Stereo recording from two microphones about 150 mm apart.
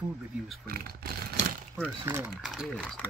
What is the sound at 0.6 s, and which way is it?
Speech, 80° right.